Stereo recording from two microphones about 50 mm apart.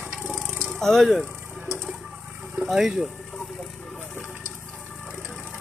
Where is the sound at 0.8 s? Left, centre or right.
Centre.